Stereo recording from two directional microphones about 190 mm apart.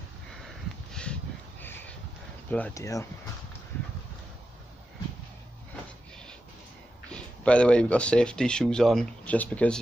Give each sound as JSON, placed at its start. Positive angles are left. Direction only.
{"t": 1.0, "sound": "a sound", "side_deg": 5}
{"t": 2.5, "sound": "speech", "side_deg": 10}
{"t": 7.1, "sound": "speech", "side_deg": 5}